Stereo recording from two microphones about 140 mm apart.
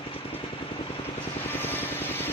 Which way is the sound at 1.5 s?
15° left (ahead or behind).